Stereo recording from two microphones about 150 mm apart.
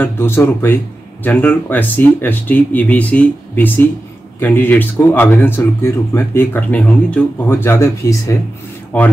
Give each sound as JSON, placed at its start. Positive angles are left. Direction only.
{"t": 0.0, "sound": "speech", "side_deg": 15}